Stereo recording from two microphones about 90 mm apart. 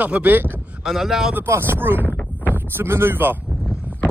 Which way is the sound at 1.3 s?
25° right (ahead or behind).